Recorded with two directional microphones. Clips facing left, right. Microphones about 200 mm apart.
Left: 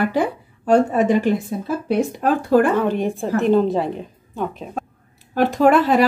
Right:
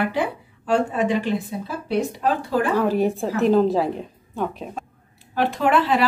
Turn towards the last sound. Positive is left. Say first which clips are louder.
# left 5 dB
turn(degrees=45)  # may be behind; listen again after turning